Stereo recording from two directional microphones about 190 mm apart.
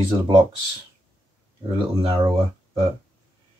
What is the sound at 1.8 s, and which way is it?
Speech, 25° right (ahead or behind).